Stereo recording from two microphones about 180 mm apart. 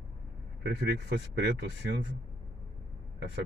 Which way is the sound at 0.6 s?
65° right (ahead or behind).